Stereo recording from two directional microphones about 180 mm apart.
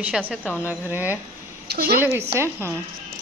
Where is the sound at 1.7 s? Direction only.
60° right (ahead or behind).